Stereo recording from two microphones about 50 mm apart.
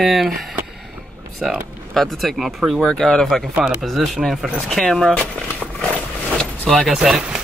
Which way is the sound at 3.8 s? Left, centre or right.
Centre.